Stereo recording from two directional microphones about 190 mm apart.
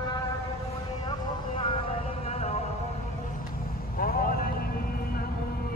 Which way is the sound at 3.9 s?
50° left (ahead or behind).